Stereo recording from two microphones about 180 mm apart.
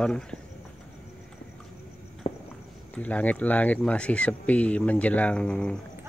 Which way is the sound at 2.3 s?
35° left (ahead or behind).